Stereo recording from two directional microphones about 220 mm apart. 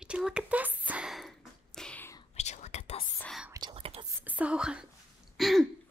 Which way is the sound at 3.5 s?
20° right (ahead or behind).